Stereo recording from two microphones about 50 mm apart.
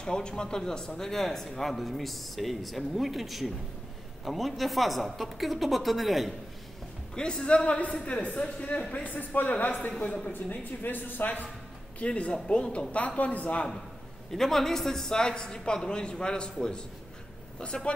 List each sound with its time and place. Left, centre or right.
0.0 s speech: centre
7.2 s a man's voice: centre
8.9 s speech: left
9.8 s a man's voice: left
10.3 s speech: left
12.0 s a man's voice: left
14.3 s a man's voice: centre